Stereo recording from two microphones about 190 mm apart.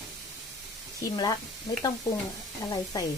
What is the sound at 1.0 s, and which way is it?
Speech, 20° left (ahead or behind).